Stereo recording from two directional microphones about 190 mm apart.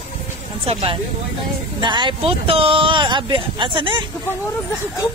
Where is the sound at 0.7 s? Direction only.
30° right (ahead or behind).